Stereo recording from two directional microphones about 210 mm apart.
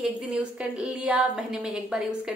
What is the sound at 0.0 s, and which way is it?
A woman's voice, 5° right (ahead or behind).